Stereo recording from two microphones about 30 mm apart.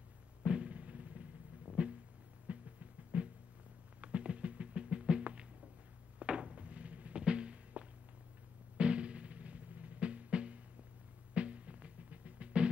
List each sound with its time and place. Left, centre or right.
0.4 s music: right
0.7 s drum: right
1.7 s a sound: right
2.4 s music: right
4.0 s a sound: right
8.7 s drum: right
9.9 s music: right